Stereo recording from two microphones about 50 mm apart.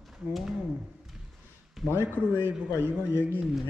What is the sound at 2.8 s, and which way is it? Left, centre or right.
Speech, right.